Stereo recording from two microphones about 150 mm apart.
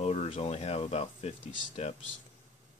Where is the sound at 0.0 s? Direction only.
45° left (ahead or behind).